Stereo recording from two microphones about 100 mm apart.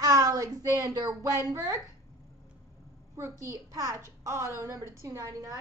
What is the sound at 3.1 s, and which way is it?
A woman's voice, 30° right (ahead or behind).